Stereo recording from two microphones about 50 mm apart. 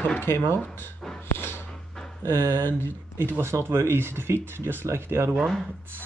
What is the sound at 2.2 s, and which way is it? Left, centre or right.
Speech, left.